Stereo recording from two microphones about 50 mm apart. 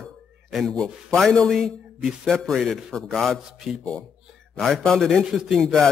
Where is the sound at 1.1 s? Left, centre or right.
Centre.